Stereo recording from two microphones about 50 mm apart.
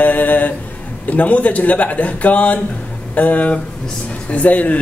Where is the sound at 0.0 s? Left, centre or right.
Left.